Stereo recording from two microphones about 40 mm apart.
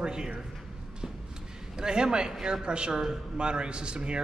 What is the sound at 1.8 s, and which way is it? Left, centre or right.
Speech, right.